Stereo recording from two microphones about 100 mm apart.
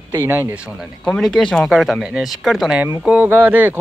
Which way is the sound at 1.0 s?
5° left (ahead or behind).